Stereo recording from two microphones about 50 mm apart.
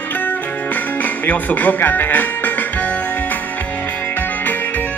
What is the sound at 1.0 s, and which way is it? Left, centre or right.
Music, left.